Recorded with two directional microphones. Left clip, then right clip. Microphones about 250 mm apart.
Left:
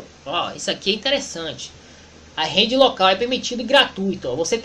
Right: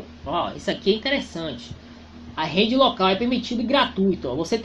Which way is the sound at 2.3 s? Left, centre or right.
Centre.